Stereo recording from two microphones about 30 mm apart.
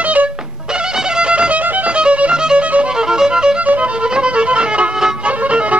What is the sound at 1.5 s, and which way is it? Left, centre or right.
Music, right.